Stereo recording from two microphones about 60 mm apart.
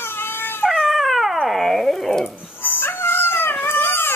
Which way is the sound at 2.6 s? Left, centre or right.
Left.